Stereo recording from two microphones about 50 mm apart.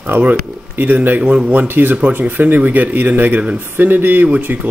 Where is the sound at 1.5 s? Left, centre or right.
Right.